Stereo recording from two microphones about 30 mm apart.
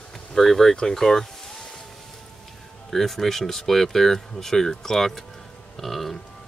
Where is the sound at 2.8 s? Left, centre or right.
Centre.